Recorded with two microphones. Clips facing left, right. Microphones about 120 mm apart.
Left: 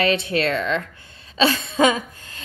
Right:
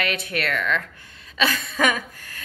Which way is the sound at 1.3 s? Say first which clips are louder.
Left 5 dB; 30° left (ahead or behind).